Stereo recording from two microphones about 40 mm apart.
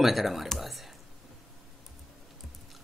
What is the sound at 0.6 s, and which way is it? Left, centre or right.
Whispering, centre.